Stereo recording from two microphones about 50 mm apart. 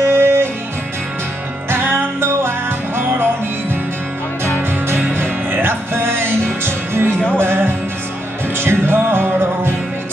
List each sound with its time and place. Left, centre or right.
0.0 s music: right
1.7 s music: right
4.6 s music: right